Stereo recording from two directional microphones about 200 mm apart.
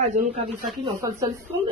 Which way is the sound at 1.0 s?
15° right (ahead or behind).